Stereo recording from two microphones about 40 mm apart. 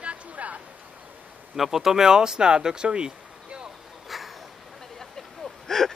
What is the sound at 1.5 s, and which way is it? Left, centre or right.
Speech, centre.